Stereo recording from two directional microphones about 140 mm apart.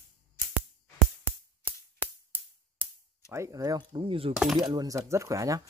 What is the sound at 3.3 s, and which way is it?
Speech, 20° right (ahead or behind).